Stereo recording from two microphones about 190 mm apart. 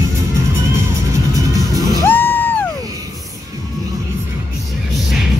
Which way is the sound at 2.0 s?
10° left (ahead or behind).